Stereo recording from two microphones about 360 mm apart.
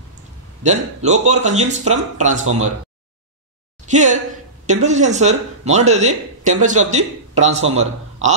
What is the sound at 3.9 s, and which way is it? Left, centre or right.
Speech, centre.